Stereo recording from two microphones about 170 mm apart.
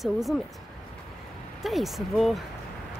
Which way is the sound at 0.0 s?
Centre (ahead or behind).